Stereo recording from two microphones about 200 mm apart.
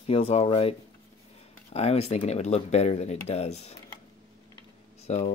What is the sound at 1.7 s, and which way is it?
Speech, 30° left (ahead or behind).